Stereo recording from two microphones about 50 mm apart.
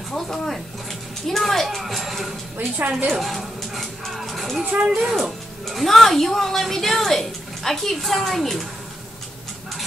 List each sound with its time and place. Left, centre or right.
0.1 s speech: centre
4.6 s speech: centre
5.0 s speech: centre